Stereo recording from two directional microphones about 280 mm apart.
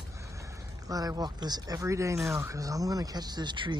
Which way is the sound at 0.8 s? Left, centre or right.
Centre.